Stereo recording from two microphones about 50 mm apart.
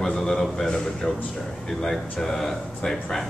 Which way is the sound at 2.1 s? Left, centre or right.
Centre.